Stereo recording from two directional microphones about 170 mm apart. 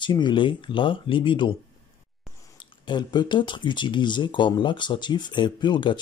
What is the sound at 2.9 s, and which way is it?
Speech, 25° left (ahead or behind).